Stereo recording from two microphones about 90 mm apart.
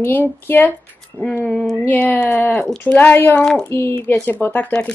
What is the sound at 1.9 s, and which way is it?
Speech, 20° left (ahead or behind).